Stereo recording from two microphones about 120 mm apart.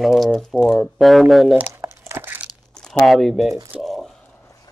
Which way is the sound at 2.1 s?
15° right (ahead or behind).